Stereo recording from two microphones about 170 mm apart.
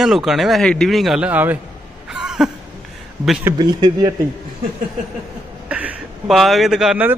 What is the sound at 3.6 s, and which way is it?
Speech, 25° right (ahead or behind).